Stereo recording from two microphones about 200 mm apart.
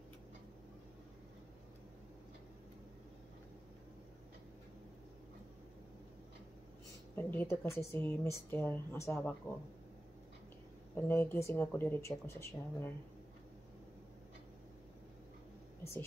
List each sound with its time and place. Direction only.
7.2 s a woman's voice: 10° left (ahead or behind)
11.0 s a woman's voice: 10° left (ahead or behind)